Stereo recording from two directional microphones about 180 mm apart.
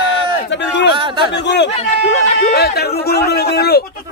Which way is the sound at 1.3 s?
70° left (ahead or behind).